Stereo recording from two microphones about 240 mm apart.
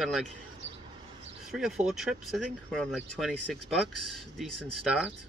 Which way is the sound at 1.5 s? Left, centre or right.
Centre.